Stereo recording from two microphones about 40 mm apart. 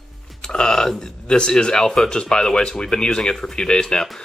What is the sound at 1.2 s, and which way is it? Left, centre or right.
Speech, left.